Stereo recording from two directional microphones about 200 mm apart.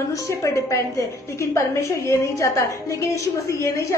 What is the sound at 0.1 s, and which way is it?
A woman's voice, 15° left (ahead or behind).